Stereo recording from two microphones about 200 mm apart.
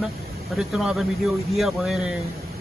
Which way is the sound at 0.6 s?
Centre (ahead or behind).